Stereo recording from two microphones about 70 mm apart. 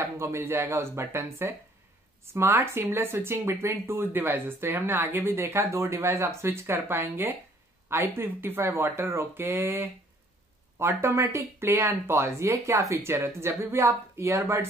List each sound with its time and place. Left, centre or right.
0.0 s speech: right
4.1 s speech: right